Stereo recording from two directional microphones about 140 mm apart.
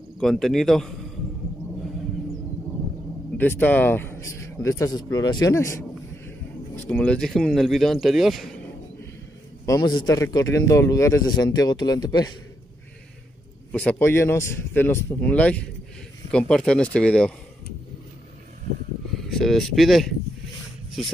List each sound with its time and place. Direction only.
0.2 s a man's voice: centre (ahead or behind)
3.3 s speech: 15° left (ahead or behind)
9.7 s a man's voice: 30° left (ahead or behind)
13.7 s speech: 10° left (ahead or behind)
19.1 s a man's voice: centre (ahead or behind)